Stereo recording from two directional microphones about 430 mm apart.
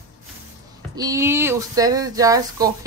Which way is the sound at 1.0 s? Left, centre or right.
Centre.